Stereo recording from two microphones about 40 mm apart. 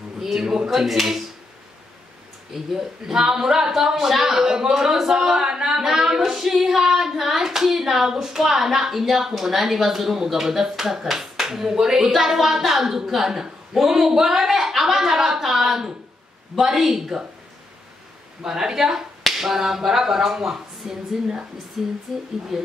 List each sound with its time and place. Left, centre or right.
0.4 s female singing: centre
0.7 s speech: centre
2.5 s female singing: centre
18.4 s female singing: centre
22.5 s speech: centre